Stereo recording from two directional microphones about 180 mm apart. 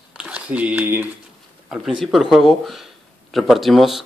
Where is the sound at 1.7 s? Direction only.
Centre (ahead or behind).